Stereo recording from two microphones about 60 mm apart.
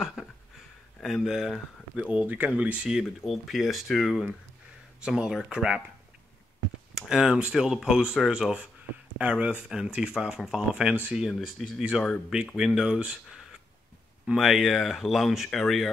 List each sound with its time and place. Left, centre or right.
0.2 s a sound: centre
1.0 s speech: centre
2.1 s speech: right
2.9 s speech: centre
7.0 s speech: centre
10.7 s speech: centre
11.1 s speech: centre
11.9 s speech: centre
14.2 s speech: centre